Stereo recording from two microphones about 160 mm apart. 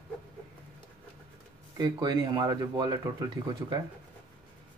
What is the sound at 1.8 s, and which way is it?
Speech, 25° right (ahead or behind).